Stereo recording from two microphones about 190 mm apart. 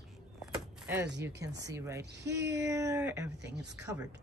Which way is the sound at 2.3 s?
15° right (ahead or behind).